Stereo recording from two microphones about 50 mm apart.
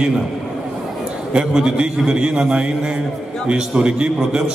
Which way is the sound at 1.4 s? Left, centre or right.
Centre.